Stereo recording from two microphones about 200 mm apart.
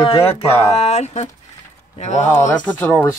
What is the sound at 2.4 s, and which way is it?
Speech, 10° left (ahead or behind).